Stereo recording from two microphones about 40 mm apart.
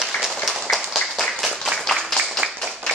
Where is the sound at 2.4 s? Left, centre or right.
Right.